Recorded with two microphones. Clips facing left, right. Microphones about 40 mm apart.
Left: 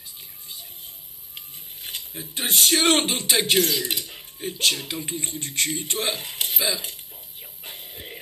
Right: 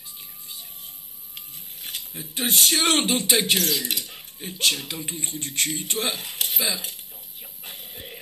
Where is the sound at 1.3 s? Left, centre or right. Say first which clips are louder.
Left 1 dB; centre.